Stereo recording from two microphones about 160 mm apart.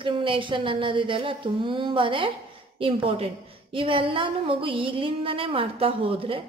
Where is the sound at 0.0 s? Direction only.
30° right (ahead or behind).